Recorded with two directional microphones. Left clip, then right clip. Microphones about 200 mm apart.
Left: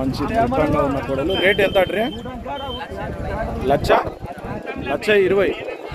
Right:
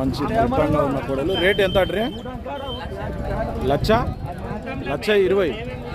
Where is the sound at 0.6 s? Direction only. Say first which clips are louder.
Left 1 dB; 10° left (ahead or behind).